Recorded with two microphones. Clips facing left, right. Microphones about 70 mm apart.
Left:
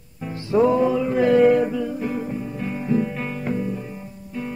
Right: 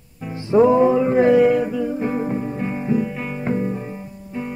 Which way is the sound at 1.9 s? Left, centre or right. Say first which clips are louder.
Right 4 dB; right.